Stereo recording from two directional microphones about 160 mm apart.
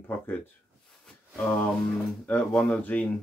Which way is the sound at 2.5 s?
5° left (ahead or behind).